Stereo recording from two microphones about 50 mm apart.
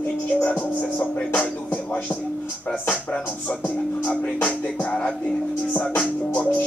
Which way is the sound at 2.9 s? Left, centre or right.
Left.